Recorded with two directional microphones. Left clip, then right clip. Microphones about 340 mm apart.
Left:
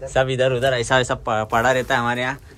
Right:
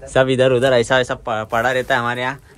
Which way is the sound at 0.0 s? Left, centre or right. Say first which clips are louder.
Right 4 dB; centre.